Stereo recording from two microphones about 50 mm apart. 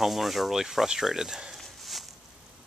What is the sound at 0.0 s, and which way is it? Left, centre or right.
Speech, centre.